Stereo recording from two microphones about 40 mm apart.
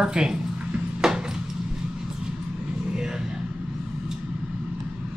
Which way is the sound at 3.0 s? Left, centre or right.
Centre.